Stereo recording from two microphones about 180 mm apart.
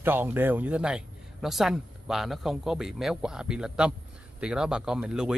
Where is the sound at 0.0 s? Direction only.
10° right (ahead or behind).